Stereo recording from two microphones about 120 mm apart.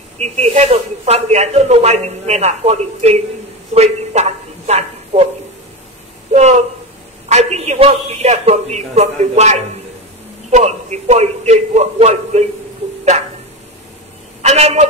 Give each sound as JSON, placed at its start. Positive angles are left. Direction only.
{"t": 0.2, "sound": "a man's voice", "side_deg": -70}
{"t": 3.7, "sound": "a sound", "side_deg": -65}
{"t": 6.3, "sound": "a man's voice", "side_deg": -70}
{"t": 14.4, "sound": "a woman's voice", "side_deg": -65}